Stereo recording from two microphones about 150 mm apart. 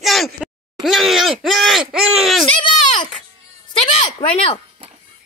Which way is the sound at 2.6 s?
35° left (ahead or behind).